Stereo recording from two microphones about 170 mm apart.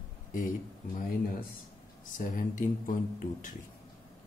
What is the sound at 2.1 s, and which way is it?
Speech, 50° left (ahead or behind).